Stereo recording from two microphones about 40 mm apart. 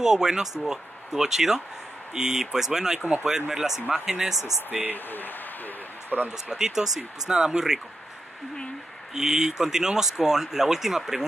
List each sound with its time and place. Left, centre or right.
0.0 s speech: centre
4.6 s speech: right
4.9 s speech: left
6.0 s speech: right
6.3 s speech: centre
9.1 s speech: centre